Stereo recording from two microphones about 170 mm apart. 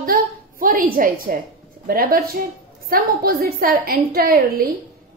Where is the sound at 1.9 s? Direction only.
60° right (ahead or behind).